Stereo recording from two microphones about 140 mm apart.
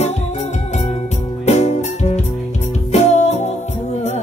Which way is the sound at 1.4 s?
55° left (ahead or behind).